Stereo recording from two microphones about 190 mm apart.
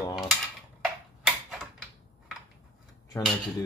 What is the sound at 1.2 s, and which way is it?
Tick-tock, centre (ahead or behind).